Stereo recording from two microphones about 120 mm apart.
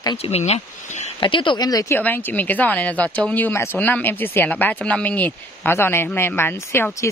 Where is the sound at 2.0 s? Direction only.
15° left (ahead or behind).